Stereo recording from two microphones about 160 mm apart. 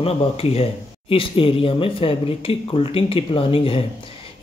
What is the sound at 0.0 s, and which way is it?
Speech, 40° left (ahead or behind).